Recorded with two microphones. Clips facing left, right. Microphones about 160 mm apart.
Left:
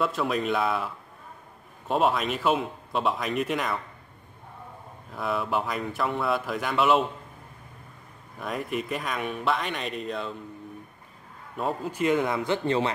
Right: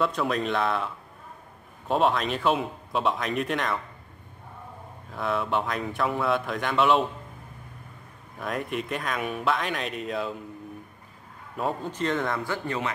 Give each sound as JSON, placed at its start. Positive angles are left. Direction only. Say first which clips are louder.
{"t": 0.0, "sound": "speech", "louder": "even", "side_deg": 0}
{"t": 5.1, "sound": "speech", "louder": "right 1 dB", "side_deg": 0}
{"t": 8.4, "sound": "speech", "louder": "even", "side_deg": 0}
{"t": 11.5, "sound": "speech", "louder": "even", "side_deg": 0}